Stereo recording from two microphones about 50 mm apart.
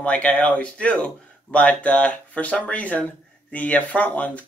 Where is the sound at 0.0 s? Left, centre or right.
Left.